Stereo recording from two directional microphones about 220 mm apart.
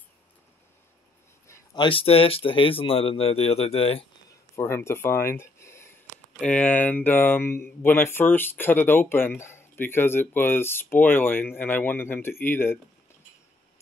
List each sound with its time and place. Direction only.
1.5 s speech: 20° left (ahead or behind)
4.6 s speech: 10° left (ahead or behind)